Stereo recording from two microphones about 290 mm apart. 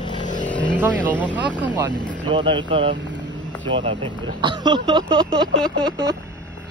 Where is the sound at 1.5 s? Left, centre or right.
Centre.